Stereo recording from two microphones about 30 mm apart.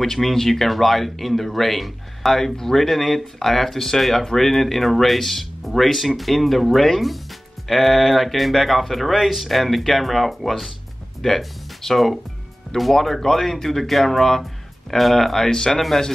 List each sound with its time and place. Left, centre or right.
0.0 s speech: centre
15.5 s speech: left